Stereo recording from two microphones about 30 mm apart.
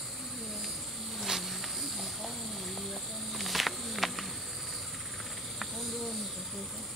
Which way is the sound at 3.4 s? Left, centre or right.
Centre.